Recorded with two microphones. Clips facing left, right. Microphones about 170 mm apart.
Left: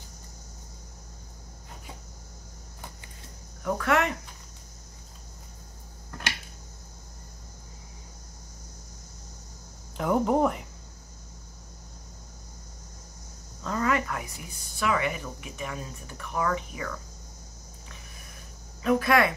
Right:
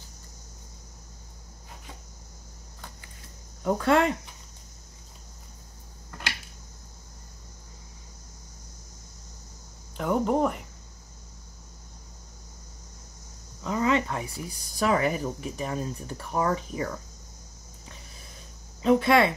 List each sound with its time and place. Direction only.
3.6 s speech: 25° right (ahead or behind)
9.9 s speech: centre (ahead or behind)
13.6 s speech: 15° right (ahead or behind); by 17.0 s 30° right (ahead or behind)
18.8 s speech: 25° right (ahead or behind)